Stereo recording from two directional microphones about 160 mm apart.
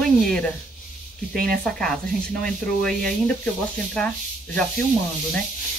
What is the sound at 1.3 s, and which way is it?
Speech, 65° right (ahead or behind).